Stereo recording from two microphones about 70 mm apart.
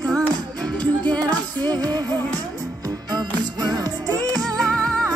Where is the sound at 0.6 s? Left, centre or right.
Centre.